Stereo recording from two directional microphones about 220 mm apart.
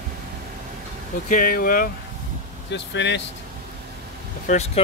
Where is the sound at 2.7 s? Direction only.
55° left (ahead or behind).